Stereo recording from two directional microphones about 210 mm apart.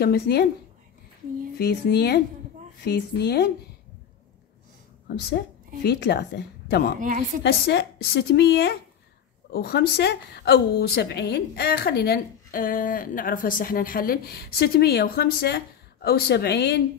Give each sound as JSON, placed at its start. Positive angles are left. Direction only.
{"t": 0.0, "sound": "a woman's voice", "side_deg": 50}
{"t": 1.6, "sound": "a woman's voice", "side_deg": 50}
{"t": 5.9, "sound": "a woman's voice", "side_deg": 50}
{"t": 7.0, "sound": "a woman's voice", "side_deg": -40}
{"t": 7.4, "sound": "a woman's voice", "side_deg": 50}